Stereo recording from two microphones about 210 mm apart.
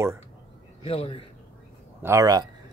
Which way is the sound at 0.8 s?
25° left (ahead or behind).